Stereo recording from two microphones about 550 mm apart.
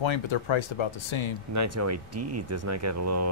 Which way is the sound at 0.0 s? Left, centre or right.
Left.